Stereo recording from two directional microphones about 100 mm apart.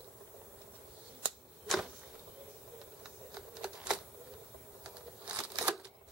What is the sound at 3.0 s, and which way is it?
Typing, 10° right (ahead or behind).